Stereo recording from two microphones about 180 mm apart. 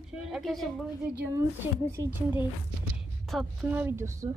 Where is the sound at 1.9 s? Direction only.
15° right (ahead or behind).